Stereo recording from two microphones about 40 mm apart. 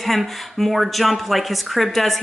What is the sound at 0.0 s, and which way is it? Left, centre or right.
A woman's voice, centre.